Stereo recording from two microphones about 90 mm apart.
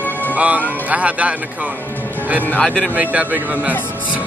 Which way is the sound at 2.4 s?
15° left (ahead or behind).